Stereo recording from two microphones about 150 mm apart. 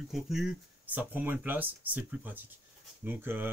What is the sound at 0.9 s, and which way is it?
Speech, 15° right (ahead or behind).